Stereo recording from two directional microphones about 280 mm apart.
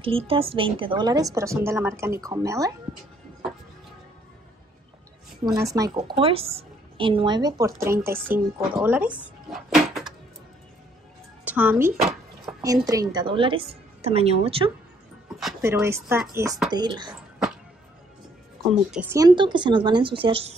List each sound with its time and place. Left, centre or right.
0.0 s a woman's voice: centre
5.5 s a woman's voice: centre
9.5 s a sound: centre
11.4 s a woman's voice: centre; by 14.7 s right
15.3 s a woman's voice: centre
18.7 s a woman's voice: centre